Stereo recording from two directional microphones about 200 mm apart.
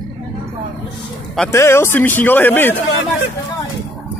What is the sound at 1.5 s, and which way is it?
Speech, 15° left (ahead or behind).